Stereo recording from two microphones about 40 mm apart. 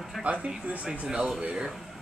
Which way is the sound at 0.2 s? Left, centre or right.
Right.